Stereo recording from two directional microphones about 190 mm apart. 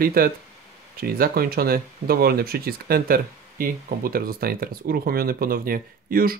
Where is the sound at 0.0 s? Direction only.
50° right (ahead or behind).